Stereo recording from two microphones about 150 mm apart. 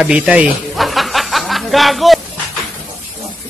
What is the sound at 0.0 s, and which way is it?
Snicker, 5° right (ahead or behind).